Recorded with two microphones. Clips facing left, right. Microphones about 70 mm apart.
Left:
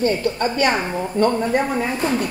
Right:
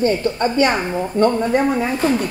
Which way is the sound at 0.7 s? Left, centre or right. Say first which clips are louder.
Right 2 dB; centre.